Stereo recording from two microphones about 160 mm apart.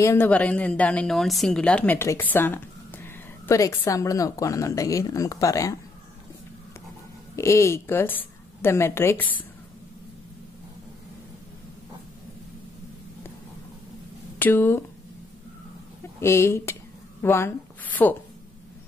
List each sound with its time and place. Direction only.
0.0 s a woman's voice: 20° left (ahead or behind)
7.3 s a woman's voice: 15° left (ahead or behind)
14.4 s a woman's voice: 15° left (ahead or behind)
16.2 s a woman's voice: 15° left (ahead or behind)